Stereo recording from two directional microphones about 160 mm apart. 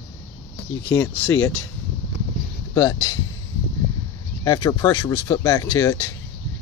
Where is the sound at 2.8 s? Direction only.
20° left (ahead or behind).